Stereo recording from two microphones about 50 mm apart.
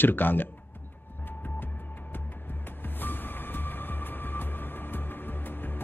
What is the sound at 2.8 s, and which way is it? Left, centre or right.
Train, left.